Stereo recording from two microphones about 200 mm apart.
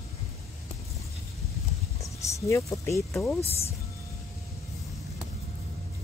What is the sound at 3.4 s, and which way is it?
Speech, 30° left (ahead or behind).